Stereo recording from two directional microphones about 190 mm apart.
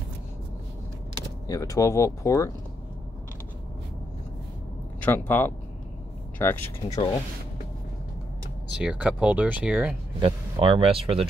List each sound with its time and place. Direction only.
1.5 s speech: 15° left (ahead or behind)
5.0 s speech: 10° left (ahead or behind)
8.7 s speech: 5° right (ahead or behind)
10.2 s speech: 30° right (ahead or behind)